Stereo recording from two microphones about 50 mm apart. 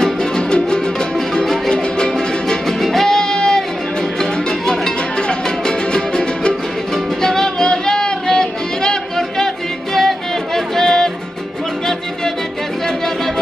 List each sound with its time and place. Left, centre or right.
0.0 s music: centre
9.9 s music: centre